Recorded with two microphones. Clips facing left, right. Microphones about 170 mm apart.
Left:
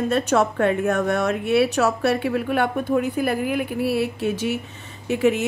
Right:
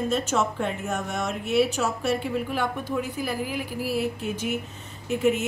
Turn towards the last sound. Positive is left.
turn(degrees=70)  # may be behind; listen again after turning